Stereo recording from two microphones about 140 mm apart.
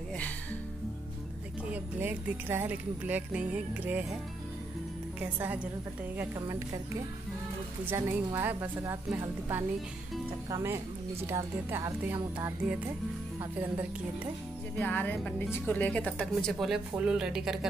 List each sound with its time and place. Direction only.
1.7 s speech: 15° right (ahead or behind)
5.2 s speech: 10° right (ahead or behind)
6.4 s speech: 25° right (ahead or behind)
7.8 s speech: 15° right (ahead or behind)
14.8 s speech: 10° left (ahead or behind); by 17.6 s 5° right (ahead or behind)